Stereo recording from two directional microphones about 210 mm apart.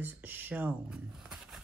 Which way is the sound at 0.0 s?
10° right (ahead or behind).